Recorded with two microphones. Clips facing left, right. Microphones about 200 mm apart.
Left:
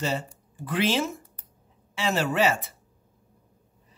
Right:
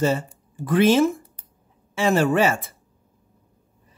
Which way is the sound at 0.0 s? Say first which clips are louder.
Right 7 dB; 50° right (ahead or behind).